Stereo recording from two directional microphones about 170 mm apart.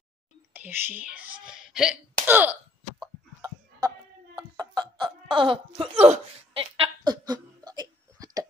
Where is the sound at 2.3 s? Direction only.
10° right (ahead or behind).